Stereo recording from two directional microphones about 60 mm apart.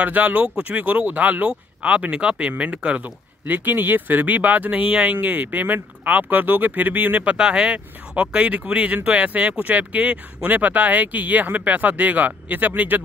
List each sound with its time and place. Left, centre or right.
0.0 s speech: right
7.3 s speech: centre